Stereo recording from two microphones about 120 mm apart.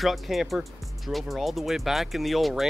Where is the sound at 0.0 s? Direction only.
Centre (ahead or behind).